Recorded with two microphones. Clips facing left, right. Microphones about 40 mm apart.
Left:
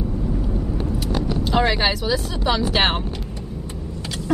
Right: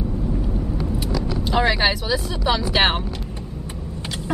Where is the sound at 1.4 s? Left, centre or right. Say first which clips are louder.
Right 1 dB; centre.